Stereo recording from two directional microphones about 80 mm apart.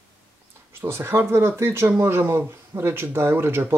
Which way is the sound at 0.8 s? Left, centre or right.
Right.